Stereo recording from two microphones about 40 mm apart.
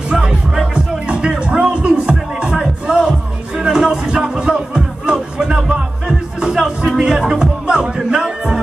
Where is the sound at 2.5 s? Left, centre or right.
Centre.